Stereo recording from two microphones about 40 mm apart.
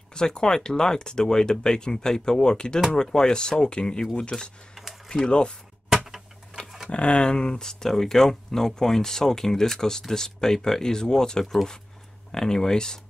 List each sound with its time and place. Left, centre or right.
0.1 s speech: centre
5.0 s a sound: centre
5.3 s speech: left
6.5 s tick-tock: left
6.9 s speech: left